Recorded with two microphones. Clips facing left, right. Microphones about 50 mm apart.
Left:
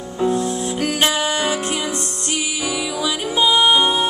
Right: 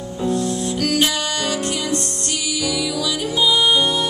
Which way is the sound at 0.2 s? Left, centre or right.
Centre.